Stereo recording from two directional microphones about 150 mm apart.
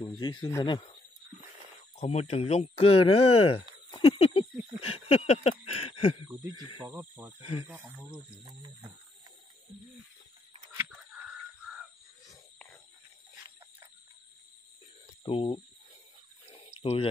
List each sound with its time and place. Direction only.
0.2 s speech: 30° left (ahead or behind)
2.0 s speech: 45° left (ahead or behind)
4.8 s a sound: 40° left (ahead or behind)
6.2 s a sound: 25° right (ahead or behind)
6.9 s speech: 15° right (ahead or behind)
7.3 s speech: 40° left (ahead or behind)
8.1 s speech: 35° right (ahead or behind)
15.2 s speech: 35° left (ahead or behind)
16.8 s speech: 45° left (ahead or behind)